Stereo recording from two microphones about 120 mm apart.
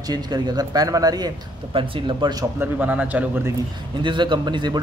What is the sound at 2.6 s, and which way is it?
Speech, 15° right (ahead or behind).